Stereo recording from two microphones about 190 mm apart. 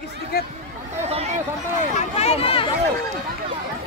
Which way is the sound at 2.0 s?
35° left (ahead or behind).